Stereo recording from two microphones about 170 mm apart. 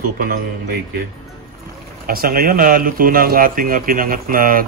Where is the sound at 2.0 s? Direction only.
60° right (ahead or behind).